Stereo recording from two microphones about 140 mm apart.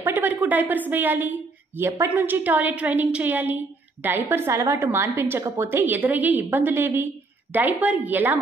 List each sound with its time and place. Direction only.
0.0 s speech: 15° right (ahead or behind)